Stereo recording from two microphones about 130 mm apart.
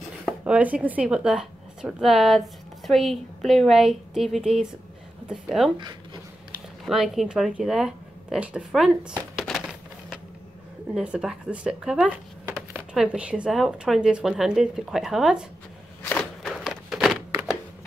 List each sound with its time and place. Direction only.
0.4 s speech: 10° right (ahead or behind)
6.9 s speech: centre (ahead or behind)
16.2 s a sound: centre (ahead or behind)